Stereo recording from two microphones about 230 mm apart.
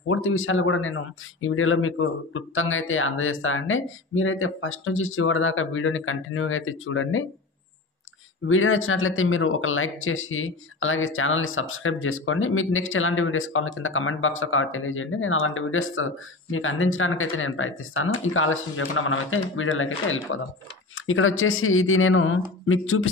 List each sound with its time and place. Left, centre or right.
0.0 s speech: left
8.5 s speech: left